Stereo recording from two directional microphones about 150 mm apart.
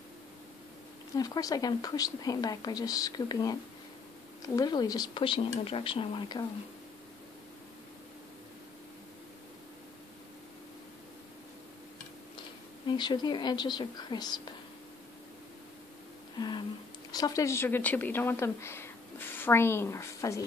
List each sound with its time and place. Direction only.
1.1 s a woman's voice: 25° left (ahead or behind)
12.8 s a woman's voice: 30° left (ahead or behind)
16.3 s a sound: 30° left (ahead or behind)
17.1 s speech: 25° left (ahead or behind)